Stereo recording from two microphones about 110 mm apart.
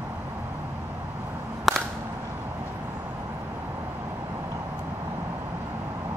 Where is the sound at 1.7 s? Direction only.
Centre (ahead or behind).